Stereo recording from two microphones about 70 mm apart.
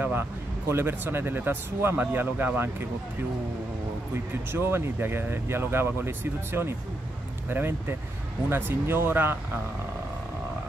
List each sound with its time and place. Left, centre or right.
0.0 s speech: right
4.1 s speech: right